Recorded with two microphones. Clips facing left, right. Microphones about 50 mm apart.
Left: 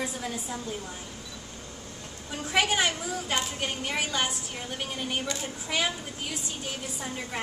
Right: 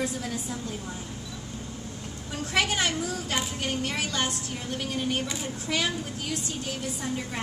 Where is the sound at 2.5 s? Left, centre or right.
Centre.